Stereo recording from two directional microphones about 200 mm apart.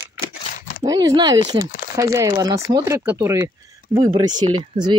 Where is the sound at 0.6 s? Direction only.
45° left (ahead or behind).